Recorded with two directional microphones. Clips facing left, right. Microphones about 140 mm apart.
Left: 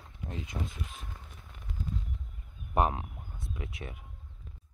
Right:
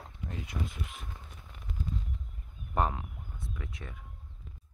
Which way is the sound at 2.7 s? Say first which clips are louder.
Left 3 dB; 15° left (ahead or behind).